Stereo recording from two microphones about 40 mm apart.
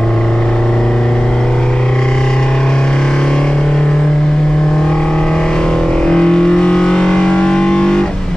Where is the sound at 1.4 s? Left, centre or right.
Left.